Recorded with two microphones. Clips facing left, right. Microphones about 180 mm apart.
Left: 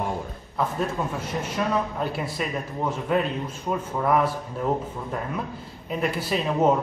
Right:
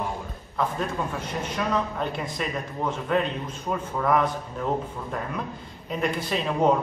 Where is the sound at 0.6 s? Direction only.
5° left (ahead or behind).